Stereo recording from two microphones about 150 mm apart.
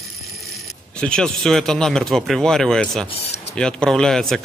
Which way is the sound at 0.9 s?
5° left (ahead or behind).